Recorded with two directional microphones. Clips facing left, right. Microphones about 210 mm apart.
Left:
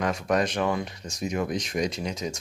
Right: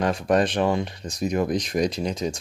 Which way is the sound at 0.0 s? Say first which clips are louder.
Right 4 dB; 30° right (ahead or behind).